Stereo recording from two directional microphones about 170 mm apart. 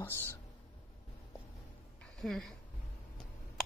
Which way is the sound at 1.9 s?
5° left (ahead or behind).